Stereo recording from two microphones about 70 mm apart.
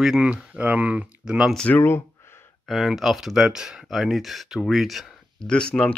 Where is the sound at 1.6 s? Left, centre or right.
Left.